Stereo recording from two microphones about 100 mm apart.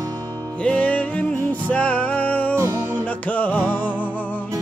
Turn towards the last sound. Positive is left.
turn(degrees=15)  # may be behind; listen again after turning